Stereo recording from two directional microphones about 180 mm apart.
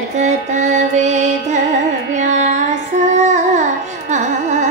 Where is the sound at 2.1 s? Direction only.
40° right (ahead or behind).